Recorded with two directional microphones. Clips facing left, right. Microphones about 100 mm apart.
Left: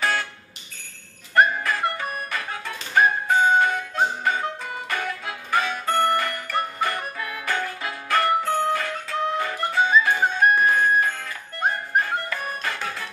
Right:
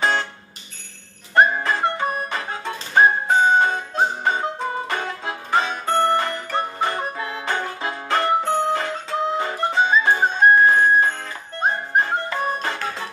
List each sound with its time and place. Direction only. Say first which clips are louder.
0.0 s music: right 3 dB; 30° right (ahead or behind)
1.3 s music: right 2 dB; 30° right (ahead or behind)